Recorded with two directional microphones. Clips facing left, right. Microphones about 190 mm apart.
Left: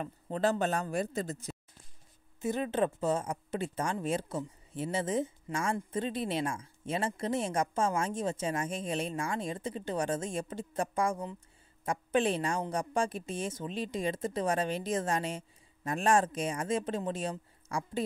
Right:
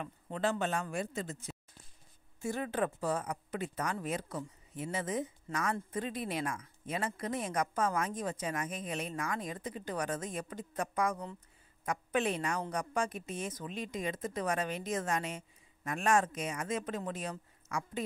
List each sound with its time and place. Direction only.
0.0 s a woman's voice: 40° left (ahead or behind)
2.4 s a woman's voice: 20° left (ahead or behind)